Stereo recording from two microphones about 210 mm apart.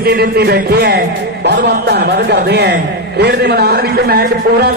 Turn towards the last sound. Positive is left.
turn(degrees=-50)  # may be behind; listen again after turning